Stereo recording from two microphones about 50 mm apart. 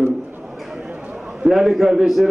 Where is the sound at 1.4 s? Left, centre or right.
Centre.